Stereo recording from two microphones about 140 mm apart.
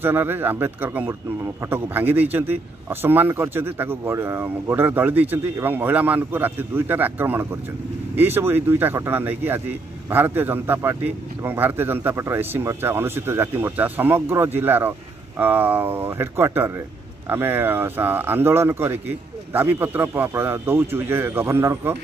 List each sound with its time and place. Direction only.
0.0 s speech: 15° right (ahead or behind)